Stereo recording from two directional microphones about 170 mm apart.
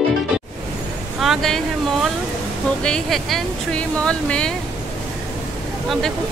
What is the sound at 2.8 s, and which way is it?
Speech, 5° left (ahead or behind).